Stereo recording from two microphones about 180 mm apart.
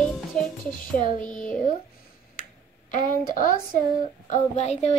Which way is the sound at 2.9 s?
50° left (ahead or behind).